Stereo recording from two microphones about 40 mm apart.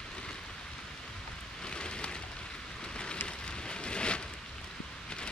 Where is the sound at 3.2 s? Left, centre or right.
Left.